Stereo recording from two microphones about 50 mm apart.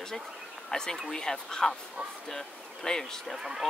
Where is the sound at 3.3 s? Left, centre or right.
Centre.